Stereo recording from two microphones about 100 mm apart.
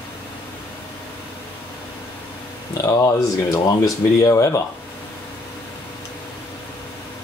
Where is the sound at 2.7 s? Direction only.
35° left (ahead or behind).